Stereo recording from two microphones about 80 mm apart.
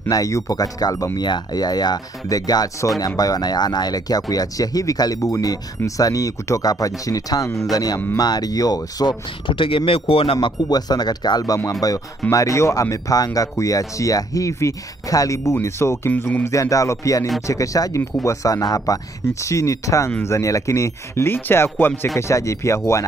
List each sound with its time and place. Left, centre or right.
0.1 s speech: left
9.5 s speech: left
10.3 s speech: left
16.1 s speech: left
16.4 s speech: left
22.1 s speech: left